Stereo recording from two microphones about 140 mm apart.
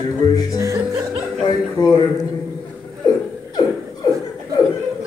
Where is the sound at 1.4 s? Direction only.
30° left (ahead or behind).